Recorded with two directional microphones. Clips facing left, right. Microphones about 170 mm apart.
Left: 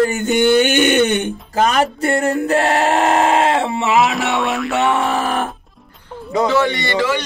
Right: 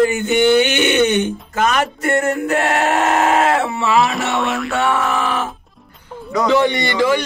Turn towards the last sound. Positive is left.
turn(degrees=-15)  # may be behind; listen again after turning